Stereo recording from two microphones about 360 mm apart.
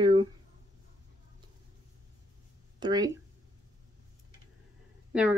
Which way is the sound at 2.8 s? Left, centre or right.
Centre.